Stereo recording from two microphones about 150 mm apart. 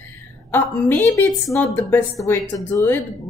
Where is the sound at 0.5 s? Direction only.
15° left (ahead or behind).